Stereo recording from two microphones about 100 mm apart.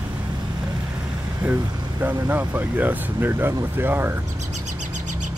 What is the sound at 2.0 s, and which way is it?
Speech, 20° right (ahead or behind).